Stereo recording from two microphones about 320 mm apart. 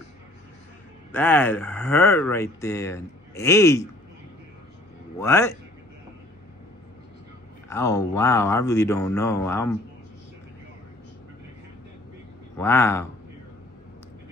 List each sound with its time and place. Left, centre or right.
1.1 s speech: centre
5.2 s speech: centre
7.7 s speech: centre
12.5 s speech: centre